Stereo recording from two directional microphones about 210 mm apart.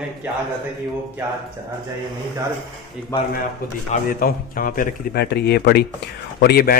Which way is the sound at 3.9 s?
40° left (ahead or behind).